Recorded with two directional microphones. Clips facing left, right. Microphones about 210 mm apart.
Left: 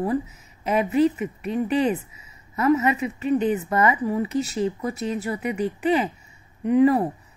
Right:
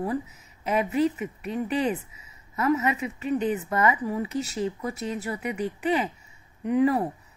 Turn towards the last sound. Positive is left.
turn(degrees=30)  # may be behind; listen again after turning